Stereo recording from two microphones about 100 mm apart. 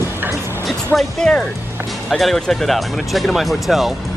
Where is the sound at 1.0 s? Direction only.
5° left (ahead or behind).